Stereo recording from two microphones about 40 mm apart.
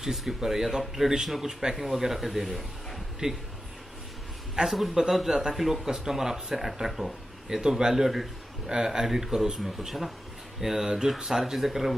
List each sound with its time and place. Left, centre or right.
0.0 s speech: centre
3.2 s a man's voice: centre
4.6 s speech: centre
7.4 s speech: centre